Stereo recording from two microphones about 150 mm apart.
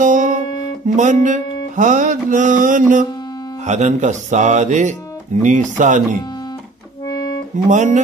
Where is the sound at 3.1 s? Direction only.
25° left (ahead or behind).